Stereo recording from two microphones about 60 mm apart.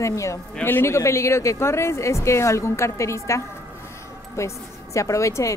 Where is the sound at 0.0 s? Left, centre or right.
Left.